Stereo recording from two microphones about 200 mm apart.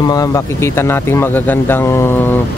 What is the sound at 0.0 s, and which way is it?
Speech, 20° left (ahead or behind).